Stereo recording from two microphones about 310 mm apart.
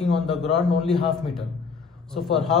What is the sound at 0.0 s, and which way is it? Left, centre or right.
A man's voice, centre.